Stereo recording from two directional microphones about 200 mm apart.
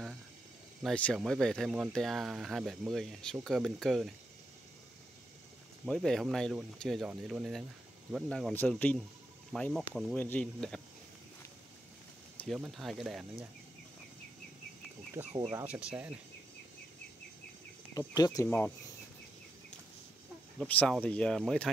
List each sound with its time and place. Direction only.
0.8 s speech: 5° left (ahead or behind)
5.9 s speech: 5° left (ahead or behind)
12.4 s speech: centre (ahead or behind)
15.2 s speech: 10° right (ahead or behind)
17.9 s speech: 20° left (ahead or behind)
20.6 s speech: 5° left (ahead or behind)